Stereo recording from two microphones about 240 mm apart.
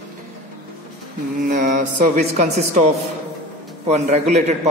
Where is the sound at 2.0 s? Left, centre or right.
Right.